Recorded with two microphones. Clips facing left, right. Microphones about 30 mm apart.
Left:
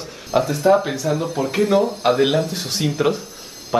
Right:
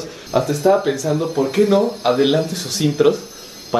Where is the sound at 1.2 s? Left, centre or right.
Centre.